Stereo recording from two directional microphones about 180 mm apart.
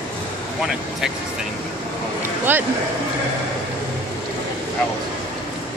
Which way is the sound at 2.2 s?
10° right (ahead or behind).